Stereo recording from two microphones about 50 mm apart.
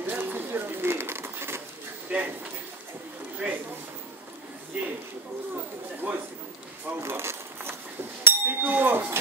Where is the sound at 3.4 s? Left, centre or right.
Right.